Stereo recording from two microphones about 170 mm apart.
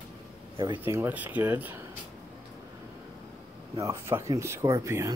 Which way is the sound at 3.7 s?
15° right (ahead or behind).